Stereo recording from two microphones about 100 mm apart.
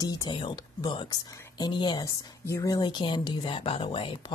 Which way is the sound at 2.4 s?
35° left (ahead or behind).